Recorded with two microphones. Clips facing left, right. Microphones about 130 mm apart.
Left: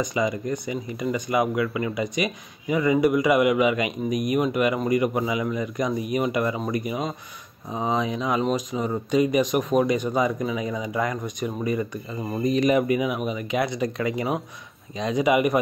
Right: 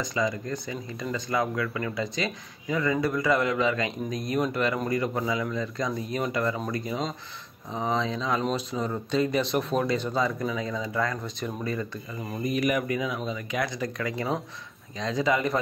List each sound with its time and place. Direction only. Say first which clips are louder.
0.0 s speech: left 4 dB; 20° left (ahead or behind)
12.2 s speech: left 5 dB; 30° left (ahead or behind)